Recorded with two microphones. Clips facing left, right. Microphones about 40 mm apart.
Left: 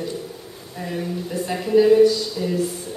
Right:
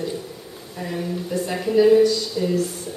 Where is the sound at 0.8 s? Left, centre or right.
Centre.